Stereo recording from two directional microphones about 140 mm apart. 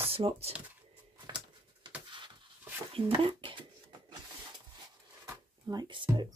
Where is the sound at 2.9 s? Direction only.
40° right (ahead or behind).